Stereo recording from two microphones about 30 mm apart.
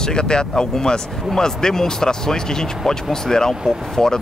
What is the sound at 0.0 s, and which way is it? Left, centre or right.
Speech, left.